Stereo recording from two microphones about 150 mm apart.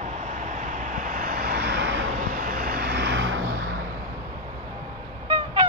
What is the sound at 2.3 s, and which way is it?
Vehicle, 65° right (ahead or behind).